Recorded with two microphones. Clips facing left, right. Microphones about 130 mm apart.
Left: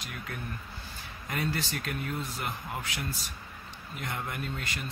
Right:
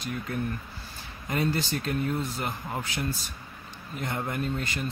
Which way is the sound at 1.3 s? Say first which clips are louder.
Right 5 dB; 30° right (ahead or behind).